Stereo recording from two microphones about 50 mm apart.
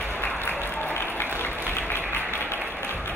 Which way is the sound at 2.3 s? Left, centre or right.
Left.